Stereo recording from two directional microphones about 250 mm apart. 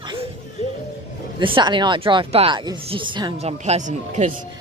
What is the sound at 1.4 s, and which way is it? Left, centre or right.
Speech, centre.